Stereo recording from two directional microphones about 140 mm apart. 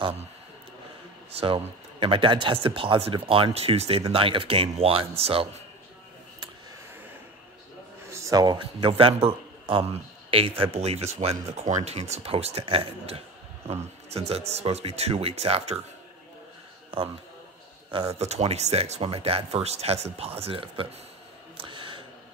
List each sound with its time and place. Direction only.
1.3 s speech: 40° right (ahead or behind)
8.1 s a man's voice: 25° right (ahead or behind); by 15.8 s 45° right (ahead or behind)
17.9 s speech: 50° right (ahead or behind)
21.6 s a sound: 35° right (ahead or behind)